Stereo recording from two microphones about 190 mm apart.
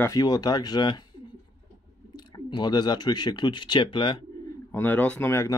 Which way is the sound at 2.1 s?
20° left (ahead or behind).